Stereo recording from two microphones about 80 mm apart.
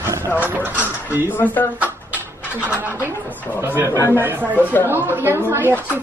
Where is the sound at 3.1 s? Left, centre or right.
Left.